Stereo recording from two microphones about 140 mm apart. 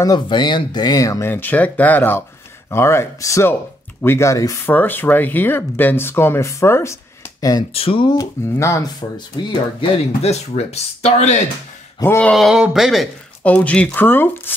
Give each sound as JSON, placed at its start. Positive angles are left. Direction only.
{"t": 0.0, "sound": "speech", "side_deg": 30}
{"t": 7.7, "sound": "speech", "side_deg": 40}
{"t": 8.2, "sound": "speech", "side_deg": 20}
{"t": 9.5, "sound": "speech", "side_deg": 45}
{"t": 12.0, "sound": "speech", "side_deg": 15}
{"t": 12.4, "sound": "speech", "side_deg": -5}